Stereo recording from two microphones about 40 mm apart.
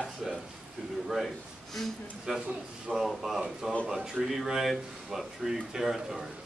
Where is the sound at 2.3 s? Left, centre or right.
Centre.